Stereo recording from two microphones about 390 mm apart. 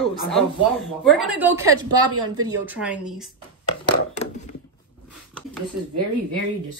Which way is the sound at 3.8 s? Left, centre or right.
Centre.